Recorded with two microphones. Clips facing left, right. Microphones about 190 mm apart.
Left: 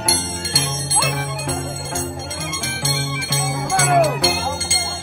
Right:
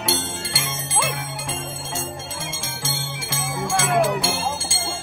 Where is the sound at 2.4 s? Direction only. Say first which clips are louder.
Left 5 dB; 65° left (ahead or behind).